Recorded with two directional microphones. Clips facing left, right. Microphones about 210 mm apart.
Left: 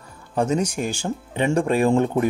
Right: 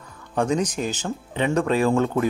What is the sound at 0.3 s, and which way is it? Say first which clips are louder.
Speech: left 1 dB; 5° left (ahead or behind).